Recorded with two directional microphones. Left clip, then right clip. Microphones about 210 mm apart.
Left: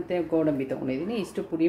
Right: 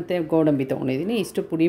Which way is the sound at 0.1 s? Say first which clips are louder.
Right 5 dB; 50° right (ahead or behind).